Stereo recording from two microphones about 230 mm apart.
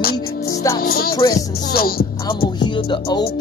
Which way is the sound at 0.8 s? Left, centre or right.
Left.